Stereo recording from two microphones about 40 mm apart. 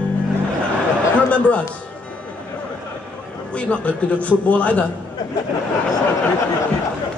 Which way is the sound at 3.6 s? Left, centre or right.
Left.